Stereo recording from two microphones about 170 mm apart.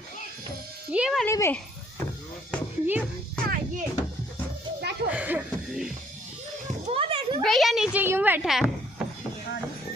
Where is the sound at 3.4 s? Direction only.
55° right (ahead or behind).